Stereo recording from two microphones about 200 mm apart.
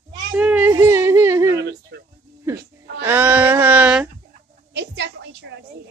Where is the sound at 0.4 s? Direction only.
10° right (ahead or behind).